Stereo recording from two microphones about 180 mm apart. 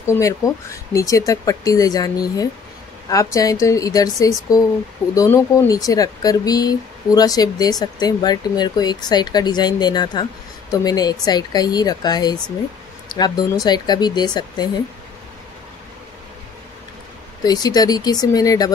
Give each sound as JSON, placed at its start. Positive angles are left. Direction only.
{"t": 0.0, "sound": "speech", "side_deg": 20}
{"t": 17.4, "sound": "speech", "side_deg": 20}